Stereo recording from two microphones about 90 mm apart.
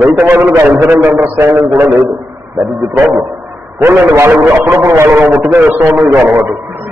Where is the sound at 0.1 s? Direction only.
20° right (ahead or behind).